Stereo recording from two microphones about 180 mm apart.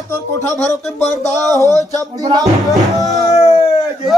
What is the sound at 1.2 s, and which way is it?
Music, 20° right (ahead or behind).